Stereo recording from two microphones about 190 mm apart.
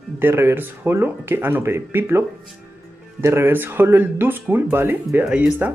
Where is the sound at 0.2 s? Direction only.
10° right (ahead or behind).